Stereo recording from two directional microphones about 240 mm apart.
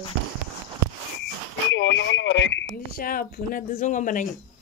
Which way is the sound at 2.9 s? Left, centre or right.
Left.